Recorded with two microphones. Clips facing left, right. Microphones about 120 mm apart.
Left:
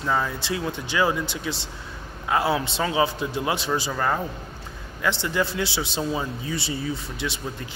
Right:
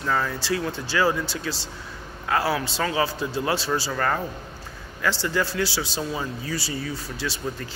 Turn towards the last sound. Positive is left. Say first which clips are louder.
# right 1 dB
turn(degrees=20)  # may be behind; listen again after turning